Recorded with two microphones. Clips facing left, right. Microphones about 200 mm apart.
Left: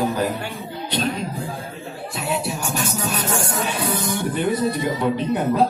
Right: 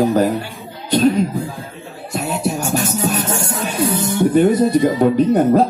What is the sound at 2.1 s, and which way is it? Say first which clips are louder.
Music: right 5 dB; 45° right (ahead or behind).